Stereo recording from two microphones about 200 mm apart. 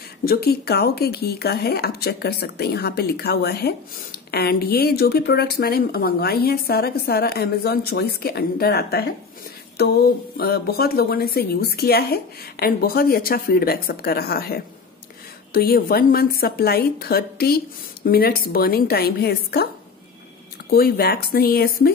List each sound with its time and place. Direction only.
0.2 s speech: 50° left (ahead or behind)
20.7 s speech: 50° left (ahead or behind)